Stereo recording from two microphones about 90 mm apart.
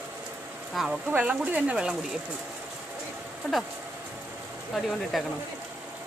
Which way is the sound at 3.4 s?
5° left (ahead or behind).